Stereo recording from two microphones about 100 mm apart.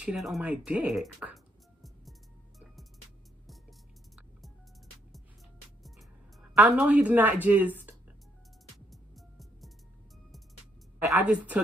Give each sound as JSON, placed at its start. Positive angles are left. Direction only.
{"t": 0.0, "sound": "a woman's voice", "side_deg": -5}
{"t": 1.3, "sound": "music", "side_deg": 0}
{"t": 6.5, "sound": "a woman's voice", "side_deg": -15}
{"t": 8.7, "sound": "music", "side_deg": 0}
{"t": 11.1, "sound": "a woman's voice", "side_deg": -15}